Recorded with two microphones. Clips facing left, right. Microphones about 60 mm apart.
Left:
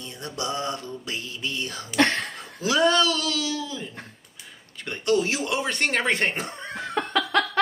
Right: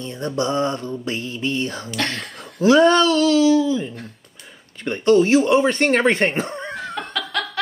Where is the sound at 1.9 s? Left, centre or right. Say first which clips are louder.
Left 3 dB; left.